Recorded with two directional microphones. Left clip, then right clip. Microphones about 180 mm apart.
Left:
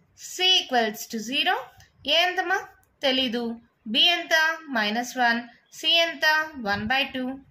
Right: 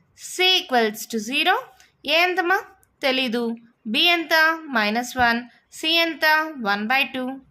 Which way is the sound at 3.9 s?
45° right (ahead or behind).